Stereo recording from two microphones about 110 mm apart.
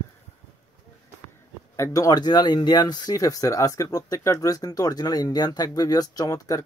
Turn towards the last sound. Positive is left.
turn(degrees=30)  # may be behind; listen again after turning